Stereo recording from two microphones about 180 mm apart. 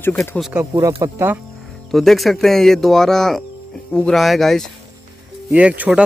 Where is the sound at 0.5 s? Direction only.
15° right (ahead or behind).